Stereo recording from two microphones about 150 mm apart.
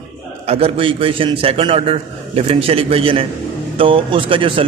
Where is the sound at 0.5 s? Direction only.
40° right (ahead or behind).